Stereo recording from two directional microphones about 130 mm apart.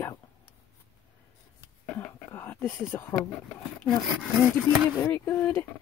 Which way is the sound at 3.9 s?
Centre (ahead or behind).